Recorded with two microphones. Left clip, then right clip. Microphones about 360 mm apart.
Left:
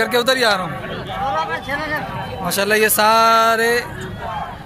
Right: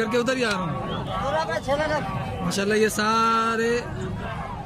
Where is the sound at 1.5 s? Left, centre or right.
Right.